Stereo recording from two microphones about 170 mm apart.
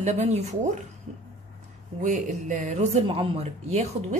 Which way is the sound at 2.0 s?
45° right (ahead or behind).